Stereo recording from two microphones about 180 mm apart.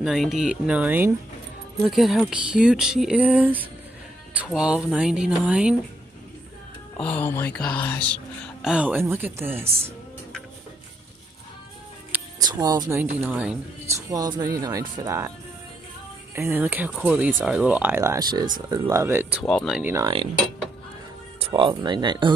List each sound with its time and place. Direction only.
0.0 s speech: centre (ahead or behind)
7.0 s speech: 10° left (ahead or behind)
8.6 s speech: 5° right (ahead or behind)
12.4 s speech: 20° right (ahead or behind)
13.0 s speech: 10° right (ahead or behind)
14.1 s speech: 20° right (ahead or behind)
16.3 s speech: 10° right (ahead or behind)
19.4 s speech: 5° left (ahead or behind)
19.8 s speech: 15° right (ahead or behind)
21.4 s speech: 30° right (ahead or behind)